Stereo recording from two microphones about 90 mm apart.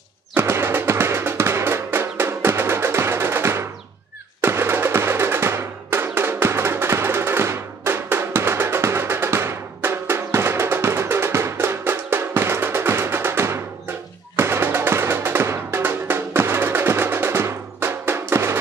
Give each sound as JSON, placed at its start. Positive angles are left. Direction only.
{"t": 0.3, "sound": "music", "side_deg": -25}
{"t": 4.4, "sound": "drum", "side_deg": -25}
{"t": 14.3, "sound": "music", "side_deg": -25}